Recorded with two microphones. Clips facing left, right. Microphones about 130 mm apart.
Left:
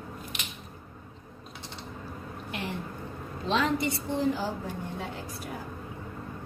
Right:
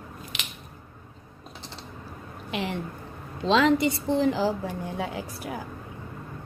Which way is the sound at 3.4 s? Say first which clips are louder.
Right 6 dB; 90° right.